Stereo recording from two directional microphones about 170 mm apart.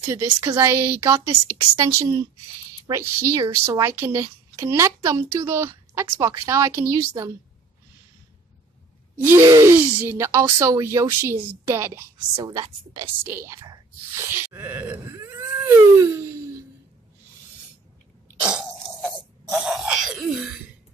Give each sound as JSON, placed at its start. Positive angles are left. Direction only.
{"t": 0.1, "sound": "a woman's voice", "side_deg": -15}
{"t": 9.1, "sound": "a woman's voice", "side_deg": -10}
{"t": 12.4, "sound": "a woman's voice", "side_deg": -25}
{"t": 18.4, "sound": "throat clearing", "side_deg": -5}